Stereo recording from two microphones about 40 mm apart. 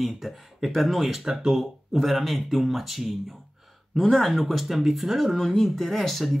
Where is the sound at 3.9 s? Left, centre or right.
Centre.